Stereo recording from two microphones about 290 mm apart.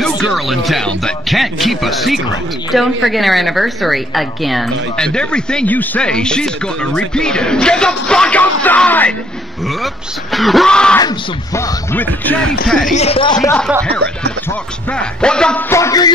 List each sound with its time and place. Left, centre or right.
0.2 s a woman's voice: centre
10.3 s a woman's voice: centre
12.9 s speech: left
14.9 s a woman's voice: centre